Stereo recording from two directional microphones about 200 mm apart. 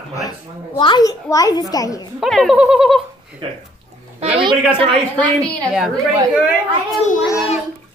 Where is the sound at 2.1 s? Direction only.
Centre (ahead or behind).